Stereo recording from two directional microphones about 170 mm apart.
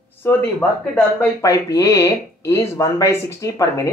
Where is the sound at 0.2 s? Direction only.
10° left (ahead or behind).